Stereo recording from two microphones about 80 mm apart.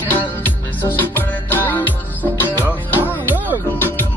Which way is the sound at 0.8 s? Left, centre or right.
Left.